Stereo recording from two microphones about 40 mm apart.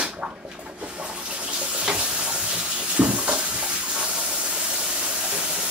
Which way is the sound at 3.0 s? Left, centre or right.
Right.